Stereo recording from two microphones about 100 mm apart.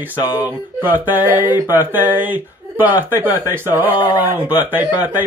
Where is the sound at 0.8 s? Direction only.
20° right (ahead or behind).